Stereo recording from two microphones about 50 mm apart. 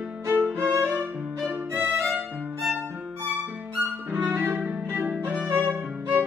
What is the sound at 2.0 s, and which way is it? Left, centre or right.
Violin, centre.